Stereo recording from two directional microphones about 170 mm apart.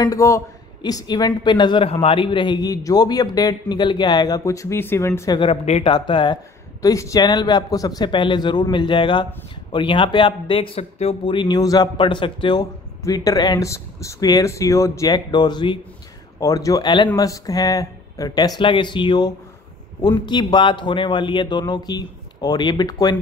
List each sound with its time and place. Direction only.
0.0 s a man's voice: 20° left (ahead or behind)